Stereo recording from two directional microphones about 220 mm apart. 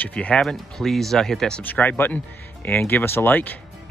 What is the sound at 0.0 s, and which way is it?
Speech, 5° left (ahead or behind).